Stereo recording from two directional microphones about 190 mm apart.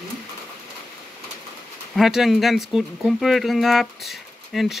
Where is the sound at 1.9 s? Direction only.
Centre (ahead or behind).